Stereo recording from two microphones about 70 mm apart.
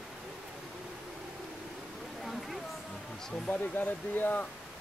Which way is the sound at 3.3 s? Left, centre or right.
Centre.